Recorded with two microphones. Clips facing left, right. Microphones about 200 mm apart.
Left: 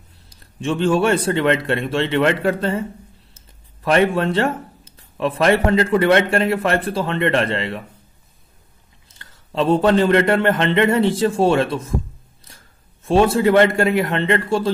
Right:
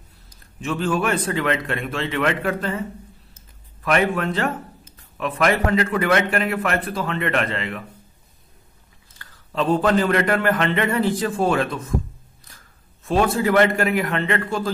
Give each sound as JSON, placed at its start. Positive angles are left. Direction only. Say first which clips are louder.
{"t": 0.6, "sound": "a man's voice", "louder": "left 5 dB", "side_deg": 30}
{"t": 3.8, "sound": "a man's voice", "louder": "left 4 dB", "side_deg": 30}
{"t": 9.2, "sound": "a man's voice", "louder": "left 3 dB", "side_deg": 25}
{"t": 13.0, "sound": "a man's voice", "louder": "left 5 dB", "side_deg": 25}